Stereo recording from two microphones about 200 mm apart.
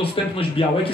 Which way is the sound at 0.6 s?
25° left (ahead or behind).